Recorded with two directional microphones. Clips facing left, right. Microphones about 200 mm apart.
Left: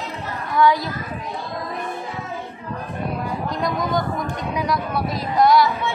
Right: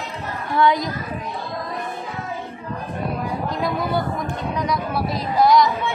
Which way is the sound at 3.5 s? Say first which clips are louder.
Left 1 dB; 5° right (ahead or behind).